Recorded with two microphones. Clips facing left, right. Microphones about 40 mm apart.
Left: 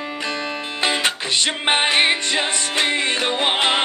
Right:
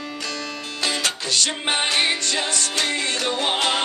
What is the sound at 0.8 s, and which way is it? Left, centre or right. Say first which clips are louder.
Music: left 4 dB; left.